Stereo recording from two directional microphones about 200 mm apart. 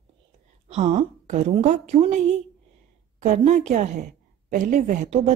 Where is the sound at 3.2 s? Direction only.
35° right (ahead or behind).